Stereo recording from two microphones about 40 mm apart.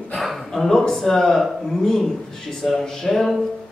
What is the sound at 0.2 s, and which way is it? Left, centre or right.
A man's voice, centre.